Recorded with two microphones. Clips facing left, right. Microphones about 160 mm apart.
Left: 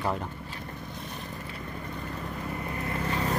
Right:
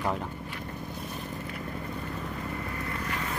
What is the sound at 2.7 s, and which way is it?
Vehicle, 30° left (ahead or behind).